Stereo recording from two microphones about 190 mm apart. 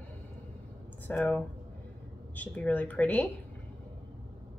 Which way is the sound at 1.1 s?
5° left (ahead or behind).